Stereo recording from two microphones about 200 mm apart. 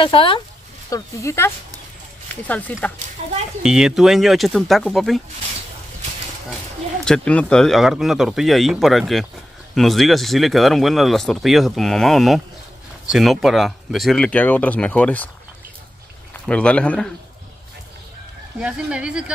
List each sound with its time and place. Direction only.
0.0 s speech: 25° left (ahead or behind); by 2.9 s 5° left (ahead or behind)
3.6 s speech: 5° right (ahead or behind)
7.1 s speech: 5° left (ahead or behind)
16.4 s speech: 5° left (ahead or behind)
18.6 s speech: 5° right (ahead or behind)